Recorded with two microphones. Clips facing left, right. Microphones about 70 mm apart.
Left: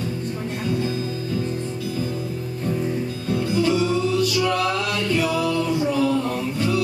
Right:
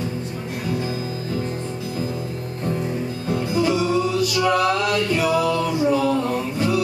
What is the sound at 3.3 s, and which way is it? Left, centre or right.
Music, right.